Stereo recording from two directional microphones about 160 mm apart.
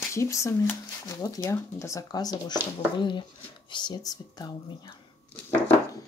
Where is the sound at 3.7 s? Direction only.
25° left (ahead or behind).